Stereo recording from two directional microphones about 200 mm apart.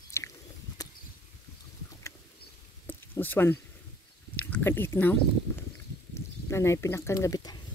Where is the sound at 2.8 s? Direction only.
10° left (ahead or behind).